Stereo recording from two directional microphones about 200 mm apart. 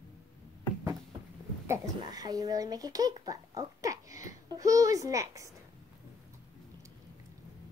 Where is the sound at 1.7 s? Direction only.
20° right (ahead or behind).